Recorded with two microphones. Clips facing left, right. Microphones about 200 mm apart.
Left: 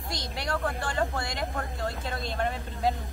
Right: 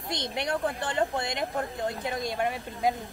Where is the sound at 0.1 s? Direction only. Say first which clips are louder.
Right 3 dB; 20° right (ahead or behind).